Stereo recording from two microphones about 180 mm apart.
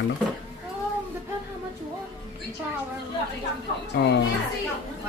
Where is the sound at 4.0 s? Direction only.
65° left (ahead or behind).